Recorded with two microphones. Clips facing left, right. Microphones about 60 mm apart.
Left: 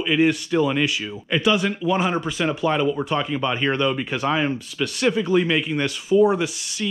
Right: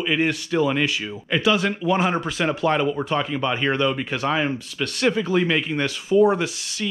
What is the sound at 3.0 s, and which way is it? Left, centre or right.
Speech, centre.